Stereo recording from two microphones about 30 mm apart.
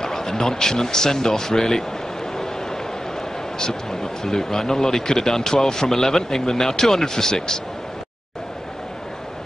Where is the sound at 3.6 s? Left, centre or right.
Centre.